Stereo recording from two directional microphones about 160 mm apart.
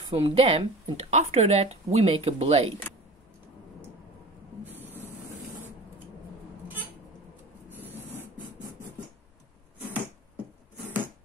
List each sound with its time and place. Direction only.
0.1 s speech: 35° right (ahead or behind)
4.6 s spray: 10° right (ahead or behind)
7.7 s printer: 10° right (ahead or behind)